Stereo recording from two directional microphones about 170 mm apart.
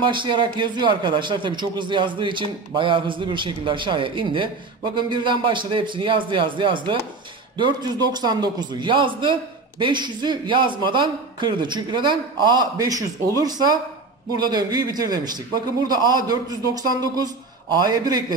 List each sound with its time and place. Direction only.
0.0 s a man's voice: 30° right (ahead or behind)